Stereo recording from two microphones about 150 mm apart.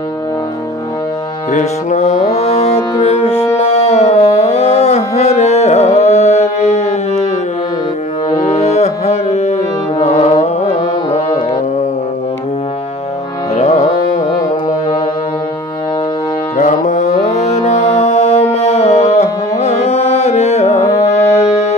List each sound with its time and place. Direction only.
1.5 s music: 50° left (ahead or behind)
8.3 s music: 50° left (ahead or behind)
13.6 s music: 50° left (ahead or behind)
16.5 s music: 50° left (ahead or behind)